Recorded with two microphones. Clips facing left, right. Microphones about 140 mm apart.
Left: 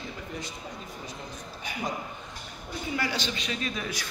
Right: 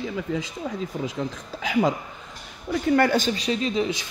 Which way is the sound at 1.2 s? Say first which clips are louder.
Right 10 dB; 90° right.